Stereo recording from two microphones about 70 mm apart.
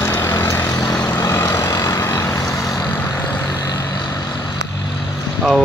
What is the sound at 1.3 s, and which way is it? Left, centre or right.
Vehicle, left.